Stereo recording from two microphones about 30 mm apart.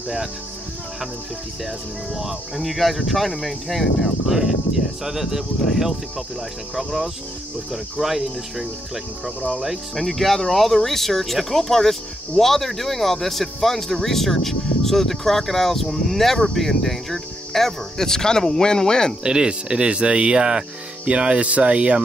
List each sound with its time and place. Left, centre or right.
2.1 s speech: centre
4.3 s speech: centre
7.7 s speech: centre
9.9 s speech: centre; by 19.1 s left
19.2 s speech: right